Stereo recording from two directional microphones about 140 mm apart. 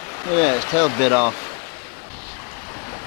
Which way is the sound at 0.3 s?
15° left (ahead or behind).